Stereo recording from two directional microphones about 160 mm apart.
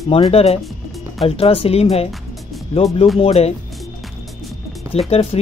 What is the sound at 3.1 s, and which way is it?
Speech, 40° left (ahead or behind).